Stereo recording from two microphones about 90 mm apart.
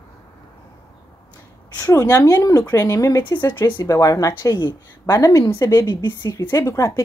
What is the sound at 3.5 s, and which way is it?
Speech, 55° left (ahead or behind).